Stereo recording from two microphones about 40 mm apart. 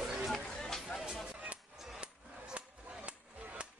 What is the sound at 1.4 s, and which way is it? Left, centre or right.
Music, right.